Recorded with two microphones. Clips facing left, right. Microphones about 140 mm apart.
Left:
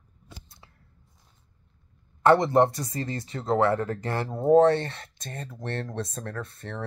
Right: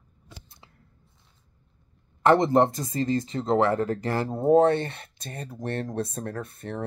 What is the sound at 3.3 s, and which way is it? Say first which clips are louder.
Speech: left 2 dB; 20° right (ahead or behind).